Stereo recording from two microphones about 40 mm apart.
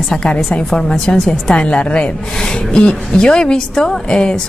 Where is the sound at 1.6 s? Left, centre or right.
Left.